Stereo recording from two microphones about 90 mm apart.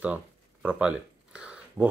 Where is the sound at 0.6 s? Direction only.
15° right (ahead or behind).